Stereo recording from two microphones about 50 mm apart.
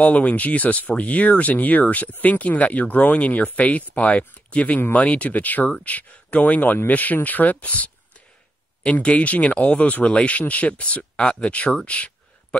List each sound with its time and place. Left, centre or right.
0.0 s speech: left